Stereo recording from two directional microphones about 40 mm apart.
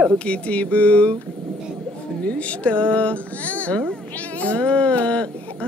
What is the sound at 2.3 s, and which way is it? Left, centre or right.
Speech, left.